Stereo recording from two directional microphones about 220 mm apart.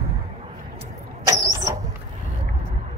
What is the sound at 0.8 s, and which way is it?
Vehicle, 20° right (ahead or behind).